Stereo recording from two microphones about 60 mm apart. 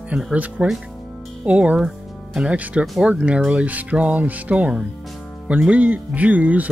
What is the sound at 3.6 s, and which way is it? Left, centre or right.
Speech, right.